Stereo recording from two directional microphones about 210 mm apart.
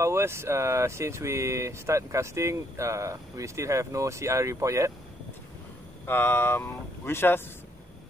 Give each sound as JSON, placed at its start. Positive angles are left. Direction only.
{"t": 0.0, "sound": "speech", "side_deg": -10}
{"t": 6.0, "sound": "speech", "side_deg": 10}